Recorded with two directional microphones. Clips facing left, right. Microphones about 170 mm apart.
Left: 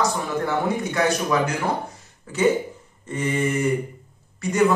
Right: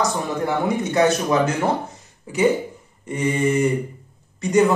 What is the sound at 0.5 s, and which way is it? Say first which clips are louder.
A man's voice: right 3 dB; 20° right (ahead or behind).